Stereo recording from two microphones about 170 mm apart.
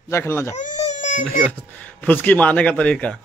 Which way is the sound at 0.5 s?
45° left (ahead or behind).